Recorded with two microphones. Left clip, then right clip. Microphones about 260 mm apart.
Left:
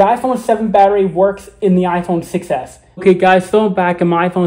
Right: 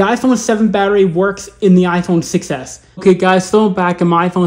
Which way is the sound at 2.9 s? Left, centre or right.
Centre.